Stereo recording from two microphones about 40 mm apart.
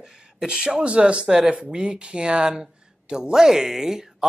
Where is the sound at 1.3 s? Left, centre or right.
Centre.